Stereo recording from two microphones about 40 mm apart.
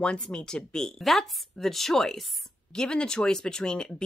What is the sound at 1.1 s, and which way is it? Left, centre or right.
Speech, centre.